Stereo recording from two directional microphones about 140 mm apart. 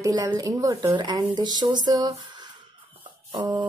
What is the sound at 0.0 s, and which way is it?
A woman's voice, 25° right (ahead or behind).